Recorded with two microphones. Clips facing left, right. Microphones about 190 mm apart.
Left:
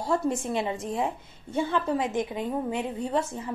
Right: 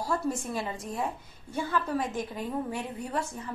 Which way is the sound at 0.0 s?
25° left (ahead or behind).